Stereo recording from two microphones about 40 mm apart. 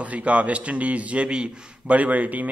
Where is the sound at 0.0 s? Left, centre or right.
Right.